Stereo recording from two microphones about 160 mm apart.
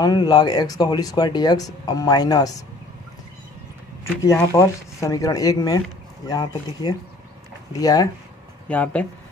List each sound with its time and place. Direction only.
0.0 s speech: 25° left (ahead or behind)
4.0 s speech: 20° left (ahead or behind)
8.6 s speech: 10° left (ahead or behind)